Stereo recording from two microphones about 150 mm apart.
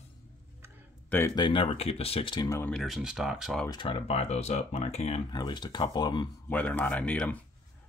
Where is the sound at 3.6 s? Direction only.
30° left (ahead or behind).